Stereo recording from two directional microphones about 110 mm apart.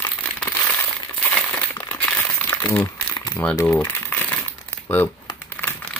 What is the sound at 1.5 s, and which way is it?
Crumpling, 15° left (ahead or behind).